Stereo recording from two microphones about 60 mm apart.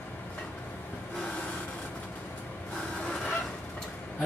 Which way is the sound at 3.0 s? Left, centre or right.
Left.